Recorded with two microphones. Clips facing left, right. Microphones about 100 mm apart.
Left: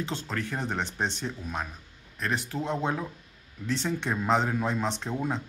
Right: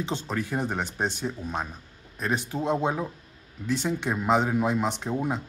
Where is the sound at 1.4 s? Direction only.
20° right (ahead or behind).